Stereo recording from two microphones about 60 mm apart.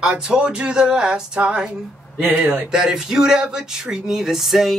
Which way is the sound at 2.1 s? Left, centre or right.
Right.